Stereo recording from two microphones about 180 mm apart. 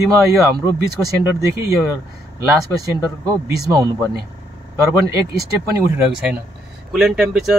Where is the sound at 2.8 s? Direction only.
20° right (ahead or behind).